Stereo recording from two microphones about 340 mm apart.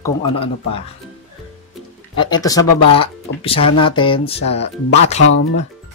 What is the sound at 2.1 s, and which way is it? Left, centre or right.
Speech, centre.